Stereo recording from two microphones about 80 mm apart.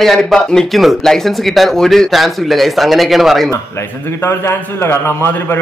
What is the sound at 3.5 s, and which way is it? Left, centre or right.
A man's voice, left.